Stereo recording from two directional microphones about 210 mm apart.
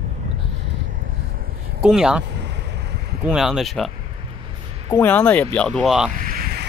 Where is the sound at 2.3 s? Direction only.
55° right (ahead or behind).